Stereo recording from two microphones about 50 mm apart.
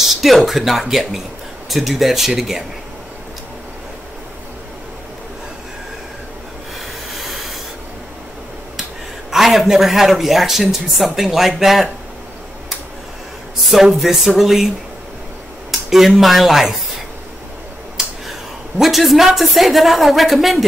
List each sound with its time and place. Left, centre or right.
0.2 s speech: centre
7.2 s rub: centre
9.3 s speech: centre
13.7 s speech: centre
15.9 s speech: centre
18.8 s speech: centre